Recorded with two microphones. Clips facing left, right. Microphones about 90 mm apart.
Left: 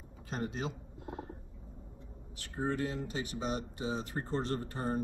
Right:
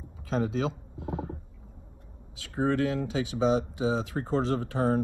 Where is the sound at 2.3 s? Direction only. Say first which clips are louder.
Right 8 dB; 90° right.